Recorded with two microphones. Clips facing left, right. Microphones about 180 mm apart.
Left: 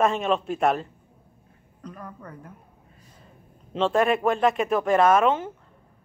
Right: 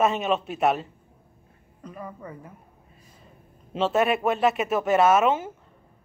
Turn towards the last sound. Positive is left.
turn(degrees=-10)  # may be behind; listen again after turning